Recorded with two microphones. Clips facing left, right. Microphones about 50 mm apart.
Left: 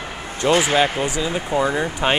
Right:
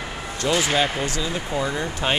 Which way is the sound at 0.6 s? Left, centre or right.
Centre.